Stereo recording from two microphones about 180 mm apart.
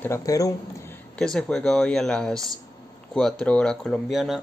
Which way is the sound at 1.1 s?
5° left (ahead or behind).